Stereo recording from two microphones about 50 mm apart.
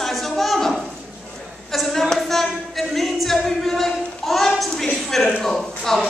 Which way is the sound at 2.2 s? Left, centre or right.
Centre.